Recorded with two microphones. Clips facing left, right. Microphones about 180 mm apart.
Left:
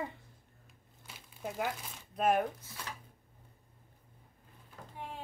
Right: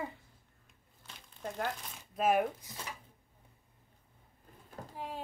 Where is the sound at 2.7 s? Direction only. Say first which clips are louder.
Even; 15° right (ahead or behind).